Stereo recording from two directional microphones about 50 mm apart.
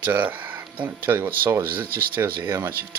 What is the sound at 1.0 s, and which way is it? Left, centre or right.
Speech, right.